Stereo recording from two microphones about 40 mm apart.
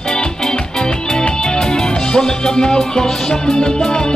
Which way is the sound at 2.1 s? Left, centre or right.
Centre.